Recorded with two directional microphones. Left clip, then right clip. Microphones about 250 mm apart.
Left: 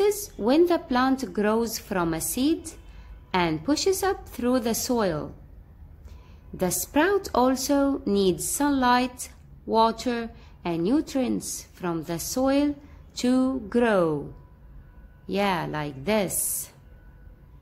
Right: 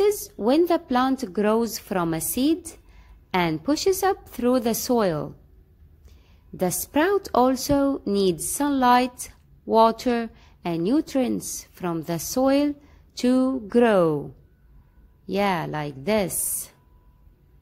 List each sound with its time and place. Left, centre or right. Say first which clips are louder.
0.0 s a woman's voice: right 2 dB; right
6.6 s a woman's voice: right 1 dB; right
15.2 s a woman's voice: right 2 dB; right